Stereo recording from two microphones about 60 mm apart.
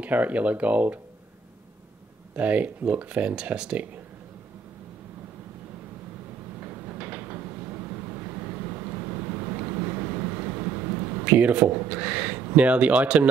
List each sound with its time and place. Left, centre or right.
0.0 s speech: right
2.3 s speech: right
6.6 s vehicle: right
9.7 s a sound: right
12.5 s speech: right